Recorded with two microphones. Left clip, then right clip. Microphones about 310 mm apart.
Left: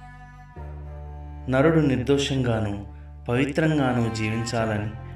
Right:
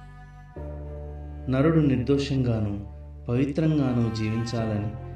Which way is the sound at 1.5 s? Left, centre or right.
Left.